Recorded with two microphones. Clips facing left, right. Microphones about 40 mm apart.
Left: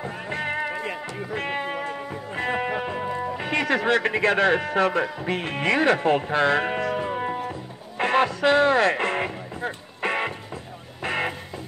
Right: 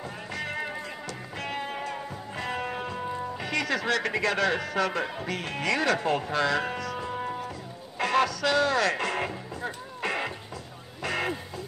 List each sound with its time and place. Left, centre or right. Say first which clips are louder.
0.0 s music: left 6 dB; left
2.8 s speech: left 5 dB; left
7.1 s music: left 5 dB; left